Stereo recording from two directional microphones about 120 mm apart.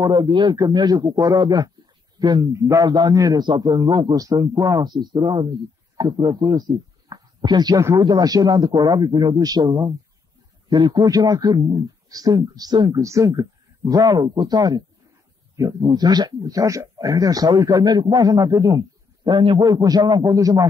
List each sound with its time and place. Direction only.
0.0 s a man's voice: 40° right (ahead or behind)
13.0 s a man's voice: 25° right (ahead or behind)